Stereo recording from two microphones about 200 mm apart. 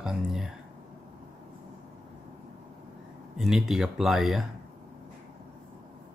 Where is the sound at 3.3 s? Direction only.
Centre (ahead or behind).